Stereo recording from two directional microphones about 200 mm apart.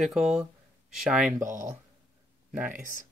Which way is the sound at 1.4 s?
40° right (ahead or behind).